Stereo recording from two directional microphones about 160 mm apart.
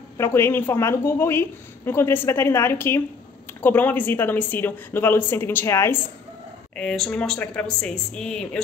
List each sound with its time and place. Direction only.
0.2 s a woman's voice: 15° left (ahead or behind)
6.7 s speech: 5° left (ahead or behind)